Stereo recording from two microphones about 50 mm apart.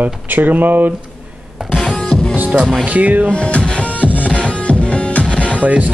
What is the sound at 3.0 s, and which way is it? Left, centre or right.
Speech, right.